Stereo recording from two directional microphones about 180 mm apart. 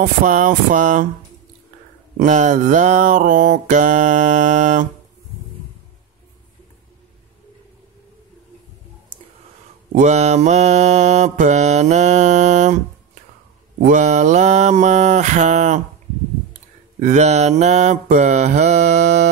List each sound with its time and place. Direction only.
0.0 s mantra: 45° right (ahead or behind)
2.1 s mantra: 45° right (ahead or behind)
9.9 s mantra: 40° right (ahead or behind)
17.0 s mantra: 40° right (ahead or behind)